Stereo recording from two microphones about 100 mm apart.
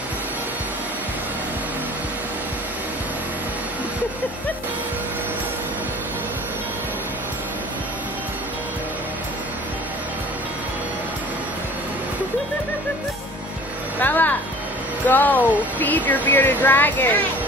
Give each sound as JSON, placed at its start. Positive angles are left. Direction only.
{"t": 14.0, "sound": "music", "side_deg": 20}
{"t": 15.0, "sound": "speech", "side_deg": 15}